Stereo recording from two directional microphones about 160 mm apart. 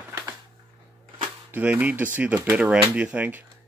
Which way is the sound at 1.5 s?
10° right (ahead or behind).